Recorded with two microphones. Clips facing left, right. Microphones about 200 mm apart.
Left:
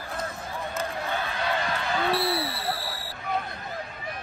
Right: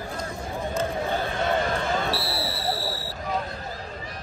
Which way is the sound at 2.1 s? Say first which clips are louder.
Left 3 dB; 55° left (ahead or behind).